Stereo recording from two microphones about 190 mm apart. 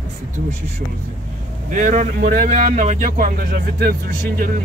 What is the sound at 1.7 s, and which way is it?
A man's voice, 40° right (ahead or behind).